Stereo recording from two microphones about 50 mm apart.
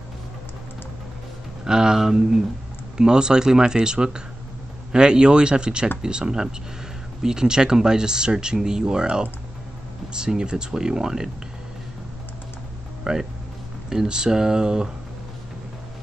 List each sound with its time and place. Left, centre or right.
1.6 s speech: centre
13.0 s speech: centre